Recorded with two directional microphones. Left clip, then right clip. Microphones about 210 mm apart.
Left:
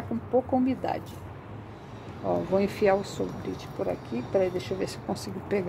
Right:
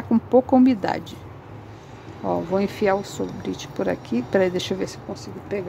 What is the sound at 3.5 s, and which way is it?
Speech, 30° right (ahead or behind).